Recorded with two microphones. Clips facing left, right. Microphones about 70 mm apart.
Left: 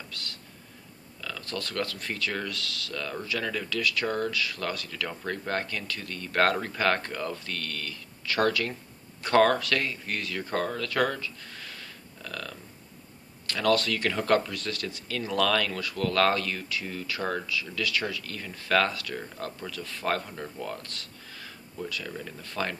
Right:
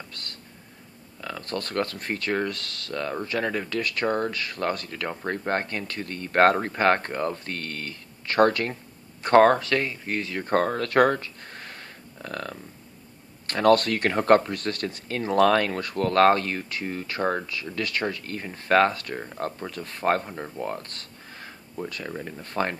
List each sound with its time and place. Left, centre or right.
0.1 s whispering: right
1.2 s speech: right
10.4 s speech: right